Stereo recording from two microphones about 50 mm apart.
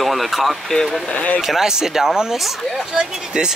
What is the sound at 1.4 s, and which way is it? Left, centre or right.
Speech, centre.